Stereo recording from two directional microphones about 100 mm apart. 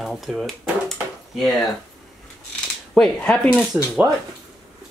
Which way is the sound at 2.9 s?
5° left (ahead or behind).